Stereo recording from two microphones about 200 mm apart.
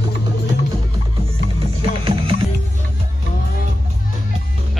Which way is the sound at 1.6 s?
25° right (ahead or behind).